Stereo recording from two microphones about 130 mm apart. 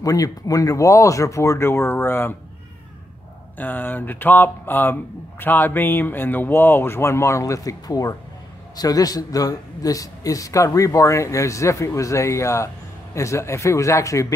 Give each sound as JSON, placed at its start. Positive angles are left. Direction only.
{"t": 0.0, "sound": "speech", "side_deg": 25}
{"t": 3.5, "sound": "speech", "side_deg": 15}